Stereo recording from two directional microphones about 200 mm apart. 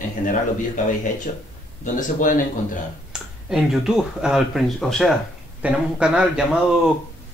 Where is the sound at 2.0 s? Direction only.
40° left (ahead or behind).